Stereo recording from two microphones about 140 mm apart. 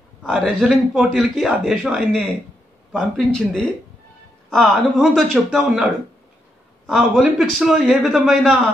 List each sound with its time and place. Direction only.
0.4 s a man's voice: centre (ahead or behind)